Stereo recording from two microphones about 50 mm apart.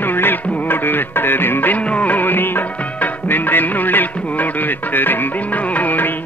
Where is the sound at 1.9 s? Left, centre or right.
Left.